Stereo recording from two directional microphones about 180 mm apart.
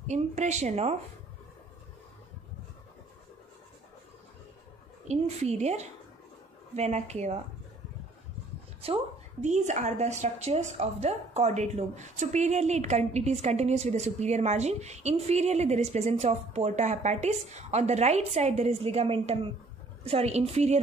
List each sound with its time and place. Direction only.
0.1 s a woman's voice: 40° right (ahead or behind)
5.0 s a woman's voice: 40° right (ahead or behind)
8.8 s a woman's voice: 35° right (ahead or behind)